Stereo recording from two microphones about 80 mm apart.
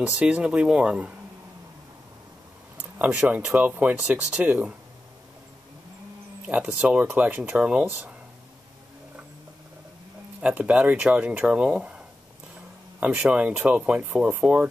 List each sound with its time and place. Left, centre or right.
0.2 s speech: centre
2.8 s speech: centre
6.4 s speech: centre
10.4 s speech: centre
13.0 s speech: centre